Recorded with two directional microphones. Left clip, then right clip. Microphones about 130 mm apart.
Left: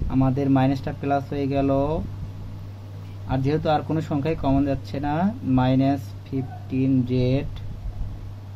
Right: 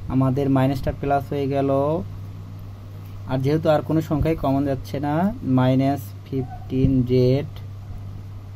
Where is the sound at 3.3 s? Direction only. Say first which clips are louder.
Right 3 dB; 75° right (ahead or behind).